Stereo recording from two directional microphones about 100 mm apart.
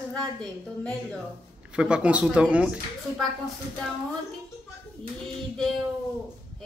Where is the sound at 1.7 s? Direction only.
10° right (ahead or behind).